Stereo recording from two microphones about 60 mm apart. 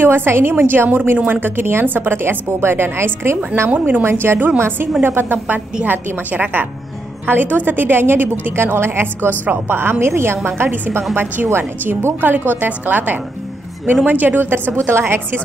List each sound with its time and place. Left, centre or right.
0.0 s a woman's voice: right
3.7 s a woman's voice: right
4.0 s a woman's voice: right